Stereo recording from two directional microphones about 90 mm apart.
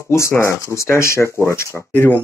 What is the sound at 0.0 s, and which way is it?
Speech, 30° left (ahead or behind).